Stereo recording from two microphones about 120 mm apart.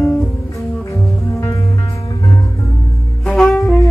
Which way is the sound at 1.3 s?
25° left (ahead or behind).